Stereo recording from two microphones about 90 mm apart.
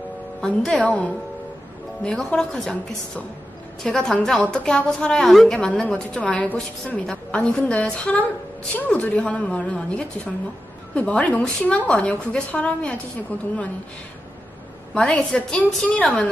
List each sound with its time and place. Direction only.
0.4 s a woman's voice: 5° left (ahead or behind)
3.8 s a woman's voice: 10° left (ahead or behind)
15.0 s a woman's voice: 10° left (ahead or behind)